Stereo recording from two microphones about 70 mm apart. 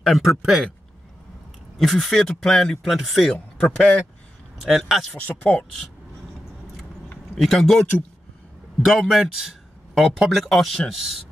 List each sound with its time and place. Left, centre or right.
0.0 s a man's voice: centre
1.8 s a man's voice: centre
3.6 s speech: centre
4.6 s a man's voice: centre
5.1 s speech: left
7.3 s a man's voice: centre
8.8 s a man's voice: centre